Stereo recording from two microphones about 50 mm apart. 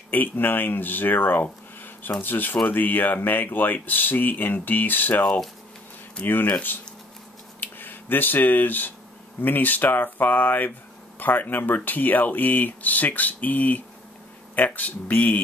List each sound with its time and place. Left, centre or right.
0.1 s speech: left
6.2 s speech: left
7.6 s speech: left